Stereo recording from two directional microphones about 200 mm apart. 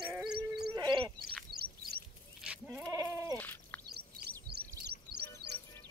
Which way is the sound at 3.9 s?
50° right (ahead or behind).